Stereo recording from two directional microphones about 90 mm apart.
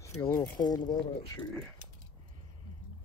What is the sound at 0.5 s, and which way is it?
Speech, 50° left (ahead or behind).